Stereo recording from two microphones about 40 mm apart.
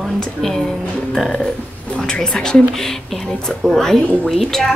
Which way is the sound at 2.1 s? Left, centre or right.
Centre.